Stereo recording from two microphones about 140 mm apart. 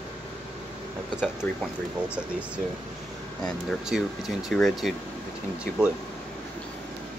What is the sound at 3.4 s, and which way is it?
Speech, centre (ahead or behind).